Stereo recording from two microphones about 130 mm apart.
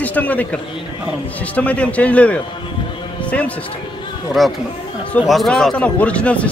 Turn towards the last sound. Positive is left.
turn(degrees=10)  # may be behind; listen again after turning